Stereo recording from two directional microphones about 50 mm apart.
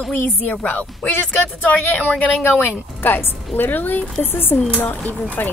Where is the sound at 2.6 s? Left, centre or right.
Left.